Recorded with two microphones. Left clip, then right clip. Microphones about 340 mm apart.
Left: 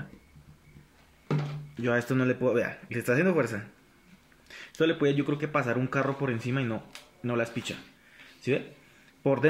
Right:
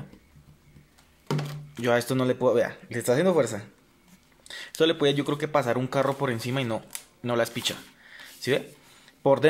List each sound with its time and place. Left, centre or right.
1.2 s speech: right
9.2 s speech: right